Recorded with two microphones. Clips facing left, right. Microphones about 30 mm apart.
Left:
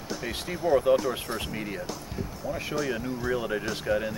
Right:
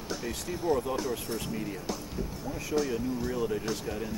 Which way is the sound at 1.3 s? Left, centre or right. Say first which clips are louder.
Left 2 dB; left.